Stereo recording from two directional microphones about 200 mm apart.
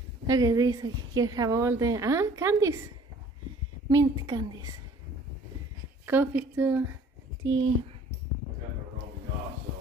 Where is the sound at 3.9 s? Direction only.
20° right (ahead or behind).